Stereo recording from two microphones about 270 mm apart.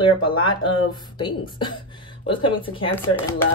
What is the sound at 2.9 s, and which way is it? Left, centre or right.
Speech, centre.